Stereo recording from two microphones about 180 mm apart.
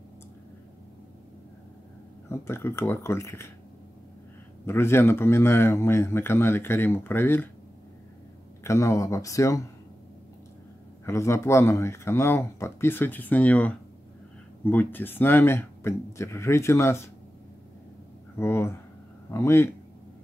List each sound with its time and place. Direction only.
2.2 s speech: 15° left (ahead or behind)
4.6 s speech: 15° left (ahead or behind)
8.6 s speech: 15° left (ahead or behind)
11.1 s speech: 15° left (ahead or behind)
18.4 s speech: 15° left (ahead or behind)